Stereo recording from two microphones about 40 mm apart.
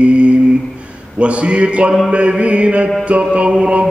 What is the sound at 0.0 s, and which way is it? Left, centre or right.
Humming, right.